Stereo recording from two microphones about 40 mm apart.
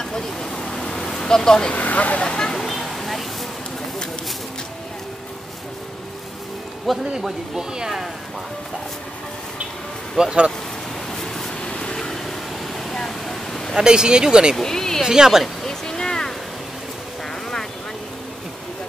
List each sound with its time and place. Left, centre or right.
0.0 s vehicle: centre
1.7 s speech: left
2.2 s vehicle: centre
2.5 s a sound: centre
7.1 s speech: centre
10.2 s speech: centre
11.1 s pink noise: centre
11.7 s vehicle: left
12.0 s vehicle: centre
12.9 s a sound: centre
13.7 s speech: right
14.6 s speech: centre
15.0 s speech: centre
15.4 s a sound: centre